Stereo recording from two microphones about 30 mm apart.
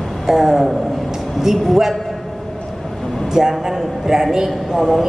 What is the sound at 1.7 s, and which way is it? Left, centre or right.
Speech, centre.